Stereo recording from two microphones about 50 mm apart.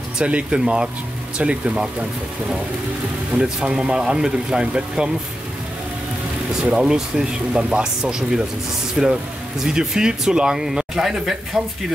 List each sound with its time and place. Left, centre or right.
0.2 s speech: right
3.3 s speech: centre
6.6 s speech: centre